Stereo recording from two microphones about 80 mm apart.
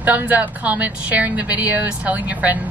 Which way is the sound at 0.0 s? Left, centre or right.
Right.